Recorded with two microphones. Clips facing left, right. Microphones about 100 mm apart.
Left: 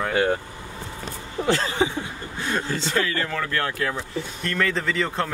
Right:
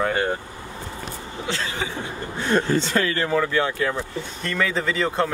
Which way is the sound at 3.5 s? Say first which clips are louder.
Right 3 dB; centre (ahead or behind).